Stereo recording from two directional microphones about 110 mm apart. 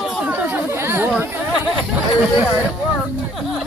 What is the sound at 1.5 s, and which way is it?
Chatter, 10° right (ahead or behind).